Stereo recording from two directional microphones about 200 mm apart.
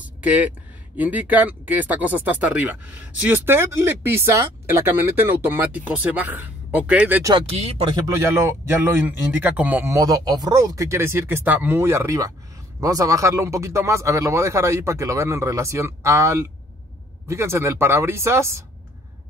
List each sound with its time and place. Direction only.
0.0 s a sound: 5° right (ahead or behind)
0.9 s speech: 10° right (ahead or behind)
7.3 s speech: 30° right (ahead or behind)
8.1 s speech: 15° right (ahead or behind)